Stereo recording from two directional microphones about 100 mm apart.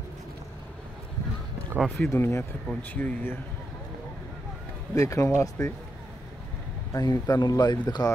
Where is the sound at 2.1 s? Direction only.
25° left (ahead or behind).